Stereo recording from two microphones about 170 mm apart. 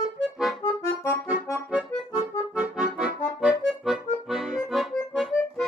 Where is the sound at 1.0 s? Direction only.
15° left (ahead or behind).